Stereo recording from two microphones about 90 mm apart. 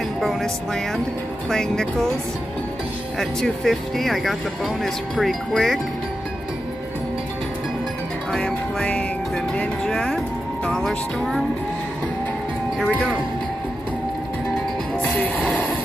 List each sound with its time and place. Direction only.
0.2 s speech: centre (ahead or behind)
1.5 s speech: 5° left (ahead or behind)
3.2 s speech: 5° left (ahead or behind)
8.3 s music: 5° left (ahead or behind)
9.6 s speech: 5° left (ahead or behind)
15.0 s music: 20° left (ahead or behind)